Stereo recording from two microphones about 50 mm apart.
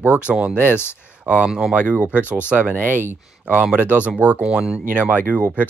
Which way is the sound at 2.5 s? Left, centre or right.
Centre.